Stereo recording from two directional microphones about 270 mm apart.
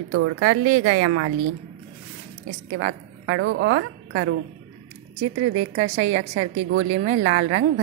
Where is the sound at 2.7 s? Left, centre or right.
Right.